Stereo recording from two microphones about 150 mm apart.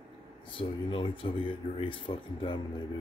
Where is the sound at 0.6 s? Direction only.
35° left (ahead or behind).